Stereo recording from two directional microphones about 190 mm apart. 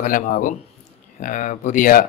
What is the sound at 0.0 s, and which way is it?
A man's voice, 45° left (ahead or behind).